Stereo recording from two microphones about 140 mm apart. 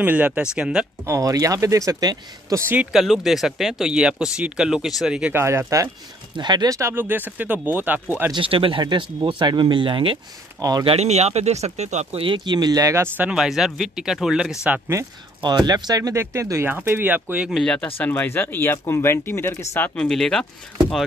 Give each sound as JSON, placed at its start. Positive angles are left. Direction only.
{"t": 0.0, "sound": "speech", "side_deg": -10}
{"t": 1.0, "sound": "speech", "side_deg": -25}
{"t": 2.7, "sound": "speech", "side_deg": -5}
{"t": 5.3, "sound": "speech", "side_deg": -20}
{"t": 8.4, "sound": "speech", "side_deg": -40}
{"t": 15.4, "sound": "speech", "side_deg": -30}
{"t": 17.5, "sound": "speech", "side_deg": 5}
{"t": 20.1, "sound": "speech", "side_deg": 5}